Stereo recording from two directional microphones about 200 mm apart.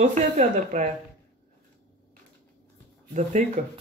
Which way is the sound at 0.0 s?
35° right (ahead or behind).